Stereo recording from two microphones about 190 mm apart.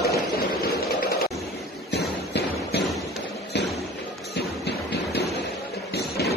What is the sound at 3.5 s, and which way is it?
Thump, 65° left (ahead or behind).